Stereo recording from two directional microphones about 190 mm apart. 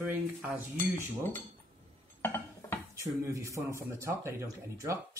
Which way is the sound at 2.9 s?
15° right (ahead or behind).